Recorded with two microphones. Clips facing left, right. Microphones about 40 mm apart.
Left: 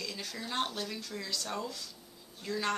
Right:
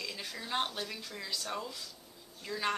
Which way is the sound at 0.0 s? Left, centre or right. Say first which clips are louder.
Left 1 dB; centre.